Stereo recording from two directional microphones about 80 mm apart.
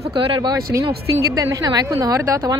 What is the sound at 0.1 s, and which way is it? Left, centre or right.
Speech, right.